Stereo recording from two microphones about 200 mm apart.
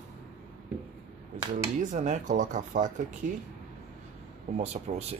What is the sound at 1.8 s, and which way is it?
Speech, 40° right (ahead or behind).